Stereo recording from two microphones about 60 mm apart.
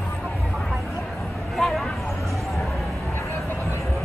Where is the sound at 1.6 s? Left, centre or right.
Centre.